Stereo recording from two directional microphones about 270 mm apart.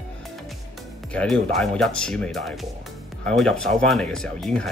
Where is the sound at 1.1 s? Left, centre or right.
Centre.